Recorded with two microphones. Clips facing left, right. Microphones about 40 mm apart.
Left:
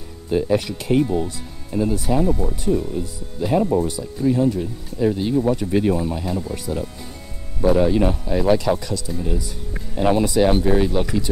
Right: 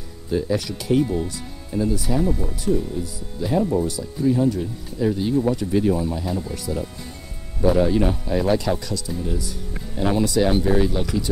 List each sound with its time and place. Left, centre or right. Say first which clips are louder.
0.3 s speech: left 3 dB; left
1.0 s speech: left 2 dB; centre
1.8 s speech: left 2 dB; left
7.6 s speech: left 2 dB; centre